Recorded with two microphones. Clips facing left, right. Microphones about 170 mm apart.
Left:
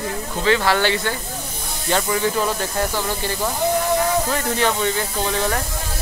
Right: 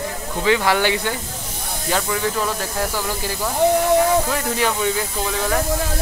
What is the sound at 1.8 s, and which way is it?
Speech, centre (ahead or behind).